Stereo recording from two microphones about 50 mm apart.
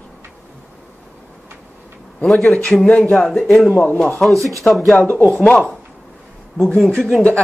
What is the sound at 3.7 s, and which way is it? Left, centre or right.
Speech, left.